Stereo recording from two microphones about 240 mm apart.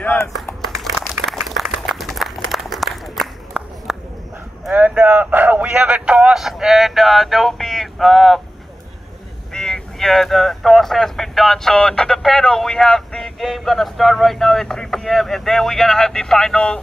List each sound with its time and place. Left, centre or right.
0.0 s a sound: centre
4.6 s a man's voice: centre
9.5 s speech: centre